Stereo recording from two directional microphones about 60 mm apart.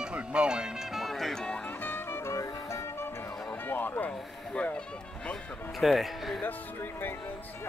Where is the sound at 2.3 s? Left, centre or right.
Left.